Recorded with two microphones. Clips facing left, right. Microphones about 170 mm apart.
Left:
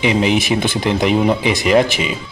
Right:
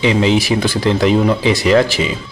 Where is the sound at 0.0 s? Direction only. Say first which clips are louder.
Right 2 dB; 15° left (ahead or behind).